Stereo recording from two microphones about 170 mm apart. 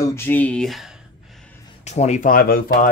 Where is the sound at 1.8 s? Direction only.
40° left (ahead or behind); by 2.5 s 55° left (ahead or behind).